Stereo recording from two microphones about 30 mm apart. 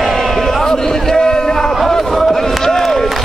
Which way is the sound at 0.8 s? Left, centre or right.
Centre.